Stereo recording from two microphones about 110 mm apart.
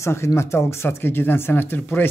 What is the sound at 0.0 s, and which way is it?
A man's voice, 25° left (ahead or behind).